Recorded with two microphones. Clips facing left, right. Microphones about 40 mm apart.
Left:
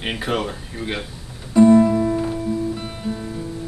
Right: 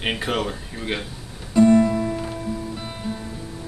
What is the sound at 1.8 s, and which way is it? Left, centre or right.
Guitar, centre.